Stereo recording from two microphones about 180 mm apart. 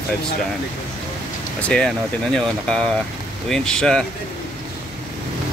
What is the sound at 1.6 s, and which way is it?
Speech, 5° left (ahead or behind).